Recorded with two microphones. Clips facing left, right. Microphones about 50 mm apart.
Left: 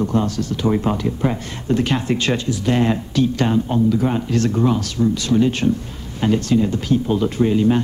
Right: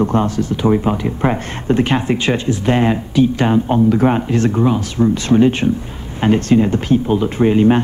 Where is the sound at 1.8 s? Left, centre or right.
Right.